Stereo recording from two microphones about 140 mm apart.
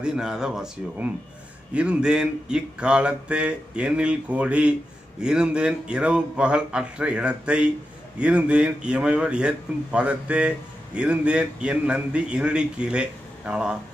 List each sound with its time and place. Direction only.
0.0 s speech: 5° right (ahead or behind)